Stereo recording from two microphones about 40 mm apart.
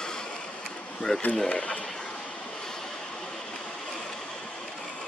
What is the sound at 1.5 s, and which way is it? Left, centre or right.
Speech, left.